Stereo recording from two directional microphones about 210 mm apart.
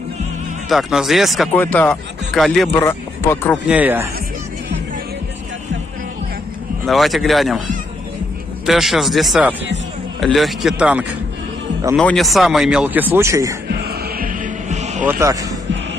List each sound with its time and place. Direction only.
0.7 s speech: centre (ahead or behind)
2.8 s speech: 15° left (ahead or behind)
3.6 s speech: 5° right (ahead or behind)
6.9 s speech: centre (ahead or behind)
8.6 s speech: centre (ahead or behind)
13.7 s music: 50° right (ahead or behind); by 15.0 s 35° right (ahead or behind)
15.0 s speech: 15° right (ahead or behind)